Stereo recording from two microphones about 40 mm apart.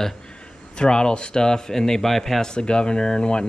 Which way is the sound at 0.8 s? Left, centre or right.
Centre.